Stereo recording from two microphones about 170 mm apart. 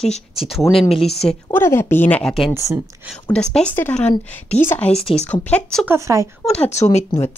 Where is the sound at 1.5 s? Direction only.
15° left (ahead or behind).